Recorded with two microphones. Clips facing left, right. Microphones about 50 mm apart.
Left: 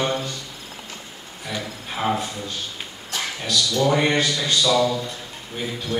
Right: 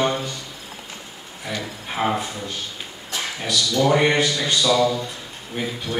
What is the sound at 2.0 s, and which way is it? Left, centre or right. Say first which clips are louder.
Speech: even; centre.